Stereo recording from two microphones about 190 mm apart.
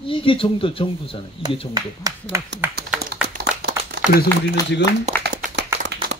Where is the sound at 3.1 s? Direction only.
55° right (ahead or behind).